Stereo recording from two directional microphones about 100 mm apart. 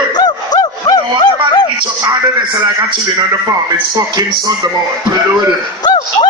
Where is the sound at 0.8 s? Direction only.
40° left (ahead or behind).